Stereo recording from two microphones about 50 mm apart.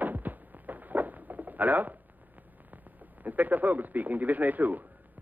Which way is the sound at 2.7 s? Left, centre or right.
Right.